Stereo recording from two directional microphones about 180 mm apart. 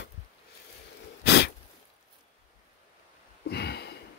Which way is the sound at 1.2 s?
65° left (ahead or behind).